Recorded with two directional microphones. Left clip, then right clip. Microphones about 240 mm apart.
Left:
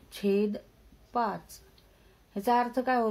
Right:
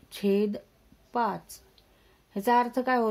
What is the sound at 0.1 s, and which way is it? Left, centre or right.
Speech, right.